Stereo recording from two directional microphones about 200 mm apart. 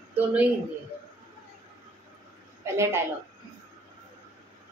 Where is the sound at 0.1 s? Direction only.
10° right (ahead or behind).